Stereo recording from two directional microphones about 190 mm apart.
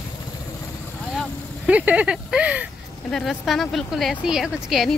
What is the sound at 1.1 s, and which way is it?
Vehicle, 5° right (ahead or behind).